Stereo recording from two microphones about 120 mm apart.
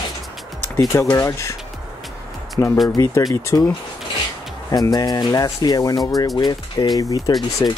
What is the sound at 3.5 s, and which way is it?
Speech, 25° left (ahead or behind).